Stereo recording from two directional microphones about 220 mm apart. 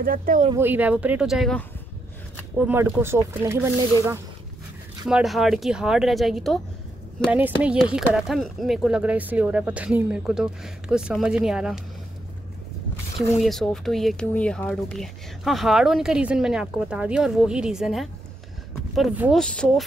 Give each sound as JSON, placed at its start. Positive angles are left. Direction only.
{"t": 0.0, "sound": "speech", "side_deg": -40}
{"t": 0.6, "sound": "speech", "side_deg": -10}
{"t": 2.6, "sound": "speech", "side_deg": -10}
{"t": 5.0, "sound": "speech", "side_deg": 0}
{"t": 13.4, "sound": "speech", "side_deg": 0}